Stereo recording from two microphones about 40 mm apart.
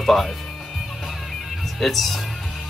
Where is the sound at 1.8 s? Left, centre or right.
Centre.